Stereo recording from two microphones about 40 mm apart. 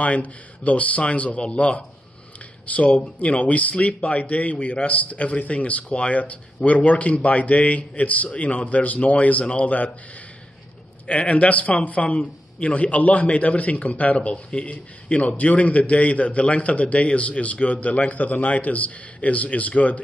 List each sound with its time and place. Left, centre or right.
0.0 s a man's voice: left
2.6 s a man's voice: left
11.1 s a man's voice: left
18.1 s a man's voice: left